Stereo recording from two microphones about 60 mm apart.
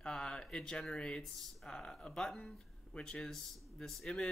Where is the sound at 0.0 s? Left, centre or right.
Centre.